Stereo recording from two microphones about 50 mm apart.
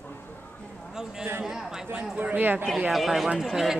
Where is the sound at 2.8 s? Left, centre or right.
Centre.